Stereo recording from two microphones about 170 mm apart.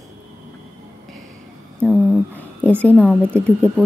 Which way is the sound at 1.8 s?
5° left (ahead or behind).